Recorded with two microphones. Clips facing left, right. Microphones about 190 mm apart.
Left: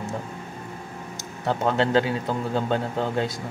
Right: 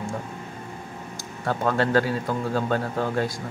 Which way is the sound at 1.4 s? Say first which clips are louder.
Left 1 dB; 20° left (ahead or behind).